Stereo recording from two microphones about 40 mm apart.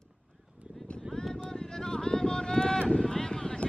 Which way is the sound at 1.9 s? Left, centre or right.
Centre.